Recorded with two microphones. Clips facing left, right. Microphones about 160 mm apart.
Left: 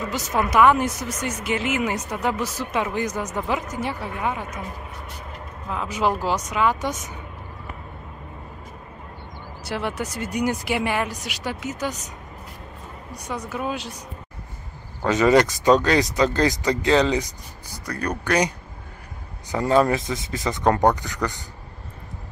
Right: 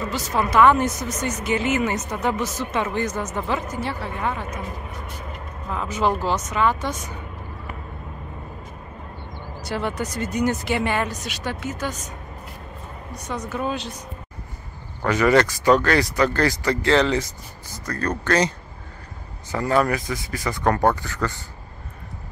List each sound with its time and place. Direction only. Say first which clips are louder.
0.1 s speech: even; 15° left (ahead or behind)
5.7 s speech: right 1 dB; 5° left (ahead or behind)
9.6 s speech: right 1 dB; 5° left (ahead or behind)
13.3 s speech: right 1 dB; 10° left (ahead or behind)
15.0 s speech: left 1 dB; 20° left (ahead or behind)
19.5 s speech: left 2 dB; 20° left (ahead or behind)